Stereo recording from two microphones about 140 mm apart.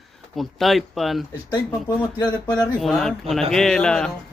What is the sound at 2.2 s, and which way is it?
Speech, 25° left (ahead or behind).